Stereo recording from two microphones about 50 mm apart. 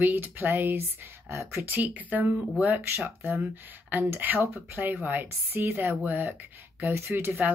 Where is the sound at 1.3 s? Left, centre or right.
Right.